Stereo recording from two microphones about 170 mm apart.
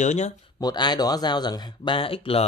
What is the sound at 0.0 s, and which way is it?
Speech, 45° left (ahead or behind).